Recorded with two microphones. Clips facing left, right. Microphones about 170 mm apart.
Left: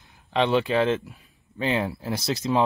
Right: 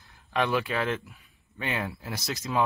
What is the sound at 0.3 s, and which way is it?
Speech, 25° left (ahead or behind).